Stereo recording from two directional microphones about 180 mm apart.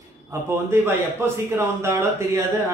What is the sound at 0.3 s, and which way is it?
A man's voice, 15° right (ahead or behind).